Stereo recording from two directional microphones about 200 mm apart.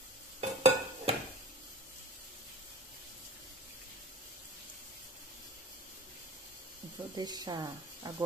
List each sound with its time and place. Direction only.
0.4 s stir: 30° right (ahead or behind)
7.2 s speech: 20° right (ahead or behind)